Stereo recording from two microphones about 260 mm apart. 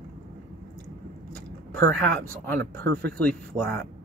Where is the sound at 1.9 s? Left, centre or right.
Centre.